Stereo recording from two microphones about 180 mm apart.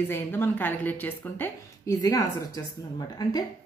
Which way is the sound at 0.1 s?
10° left (ahead or behind).